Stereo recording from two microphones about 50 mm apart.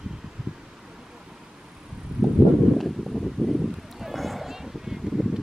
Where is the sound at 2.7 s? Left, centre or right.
Centre.